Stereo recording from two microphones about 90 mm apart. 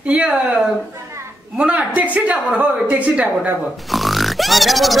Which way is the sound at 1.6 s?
15° right (ahead or behind).